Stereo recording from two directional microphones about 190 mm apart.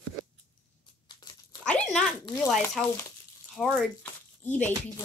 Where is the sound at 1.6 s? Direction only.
5° left (ahead or behind).